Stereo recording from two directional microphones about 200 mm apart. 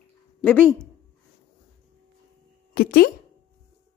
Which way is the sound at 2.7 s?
50° left (ahead or behind).